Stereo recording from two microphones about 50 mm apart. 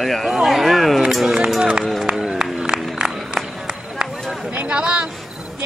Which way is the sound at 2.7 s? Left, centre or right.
Right.